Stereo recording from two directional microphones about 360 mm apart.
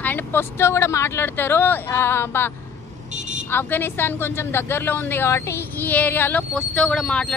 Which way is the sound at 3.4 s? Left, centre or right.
Centre.